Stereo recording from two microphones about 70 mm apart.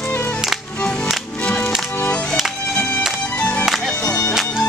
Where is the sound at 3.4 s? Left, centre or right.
Centre.